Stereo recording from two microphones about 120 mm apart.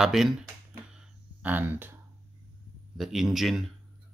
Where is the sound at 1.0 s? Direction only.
15° right (ahead or behind).